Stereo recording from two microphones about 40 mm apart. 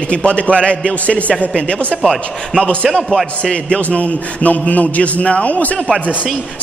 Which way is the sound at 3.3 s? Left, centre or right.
Left.